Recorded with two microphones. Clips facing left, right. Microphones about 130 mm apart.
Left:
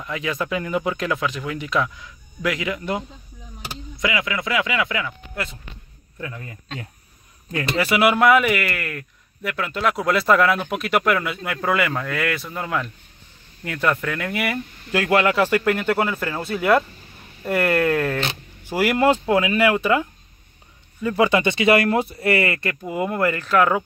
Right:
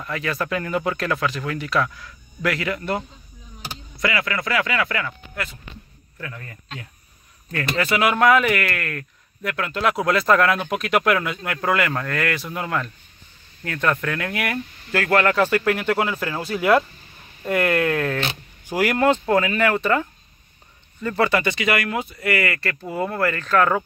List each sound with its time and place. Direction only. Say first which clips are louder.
0.0 s speech: even; 15° left (ahead or behind)
4.0 s speech: even; 10° left (ahead or behind)
5.3 s speech: left 1 dB; 25° left (ahead or behind)
7.7 s a man's voice: left 2 dB; 10° left (ahead or behind)
14.9 s a man's voice: left 1 dB; 15° left (ahead or behind)